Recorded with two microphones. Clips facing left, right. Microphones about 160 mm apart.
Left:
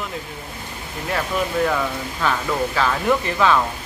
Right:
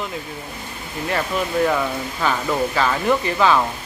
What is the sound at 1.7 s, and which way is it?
Speech, 5° right (ahead or behind).